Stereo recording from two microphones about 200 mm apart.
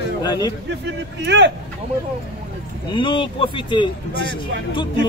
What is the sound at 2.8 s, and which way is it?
Speech, 25° left (ahead or behind).